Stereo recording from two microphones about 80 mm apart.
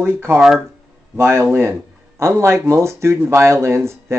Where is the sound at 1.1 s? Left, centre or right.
Right.